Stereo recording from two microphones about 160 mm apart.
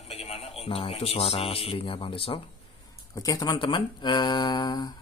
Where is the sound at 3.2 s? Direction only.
20° left (ahead or behind).